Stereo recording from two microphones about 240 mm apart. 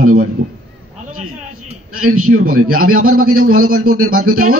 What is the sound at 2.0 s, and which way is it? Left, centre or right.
A man's voice, right.